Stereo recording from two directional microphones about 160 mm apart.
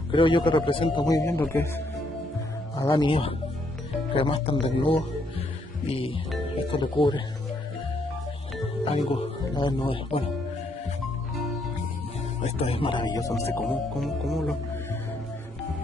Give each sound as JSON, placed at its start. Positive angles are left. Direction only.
{"t": 0.1, "sound": "speech", "side_deg": 30}
{"t": 2.8, "sound": "speech", "side_deg": 20}
{"t": 3.1, "sound": "speech", "side_deg": 35}
{"t": 8.8, "sound": "speech", "side_deg": 35}
{"t": 12.4, "sound": "speech", "side_deg": 40}
{"t": 13.9, "sound": "speech", "side_deg": 0}